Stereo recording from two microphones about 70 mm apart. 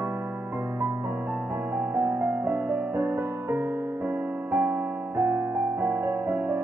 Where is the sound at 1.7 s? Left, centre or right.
Right.